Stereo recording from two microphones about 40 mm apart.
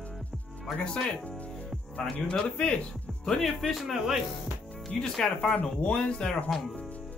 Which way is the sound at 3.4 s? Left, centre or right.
Centre.